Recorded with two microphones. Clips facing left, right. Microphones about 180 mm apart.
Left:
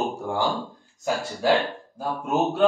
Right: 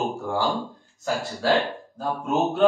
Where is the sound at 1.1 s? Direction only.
Centre (ahead or behind).